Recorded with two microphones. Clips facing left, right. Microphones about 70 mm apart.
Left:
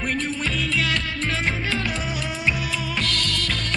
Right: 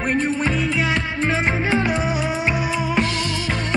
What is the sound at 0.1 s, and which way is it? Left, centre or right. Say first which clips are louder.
Music: right 8 dB; right.